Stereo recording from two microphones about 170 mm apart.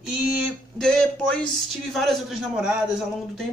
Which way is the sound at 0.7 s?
5° left (ahead or behind).